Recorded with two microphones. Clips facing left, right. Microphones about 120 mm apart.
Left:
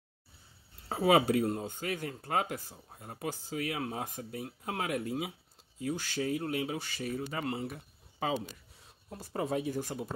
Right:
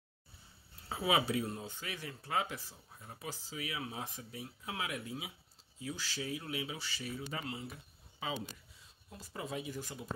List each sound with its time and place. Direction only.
0.8 s speech: 50° left (ahead or behind)